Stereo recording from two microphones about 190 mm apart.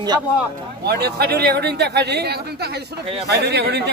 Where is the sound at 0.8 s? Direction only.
60° right (ahead or behind).